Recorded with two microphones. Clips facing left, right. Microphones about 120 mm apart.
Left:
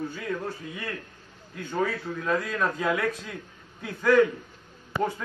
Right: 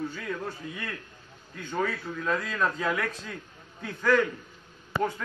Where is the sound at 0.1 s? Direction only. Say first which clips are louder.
Left 2 dB; 10° left (ahead or behind).